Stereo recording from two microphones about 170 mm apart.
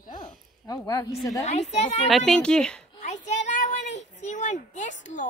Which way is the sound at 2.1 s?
Centre (ahead or behind).